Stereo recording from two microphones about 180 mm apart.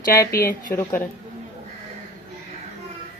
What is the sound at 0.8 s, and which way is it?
Speech, 15° left (ahead or behind).